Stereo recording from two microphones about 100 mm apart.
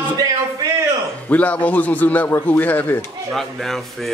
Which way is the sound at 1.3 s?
15° left (ahead or behind).